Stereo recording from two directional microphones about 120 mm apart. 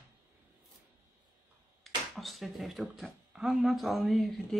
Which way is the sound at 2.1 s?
Centre (ahead or behind).